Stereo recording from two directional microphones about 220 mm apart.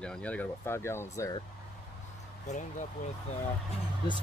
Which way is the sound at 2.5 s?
35° left (ahead or behind).